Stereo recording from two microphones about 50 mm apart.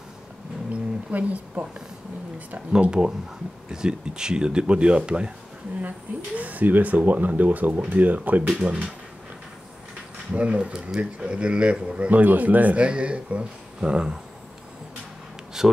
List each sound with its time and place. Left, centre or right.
0.7 s a sound: right
2.8 s speech: centre
10.3 s speech: right
12.1 s speech: right
15.6 s speech: centre